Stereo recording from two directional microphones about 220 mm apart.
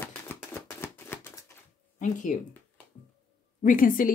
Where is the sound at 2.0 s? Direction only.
35° left (ahead or behind).